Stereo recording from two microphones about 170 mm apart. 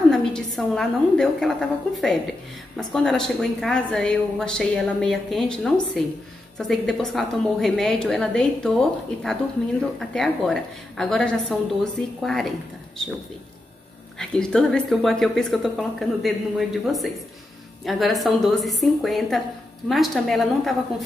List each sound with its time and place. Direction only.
0.1 s a woman's voice: 5° left (ahead or behind)
14.1 s speech: 5° left (ahead or behind)